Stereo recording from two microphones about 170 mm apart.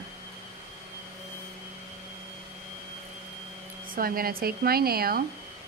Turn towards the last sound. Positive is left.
turn(degrees=-60)  # may be behind; listen again after turning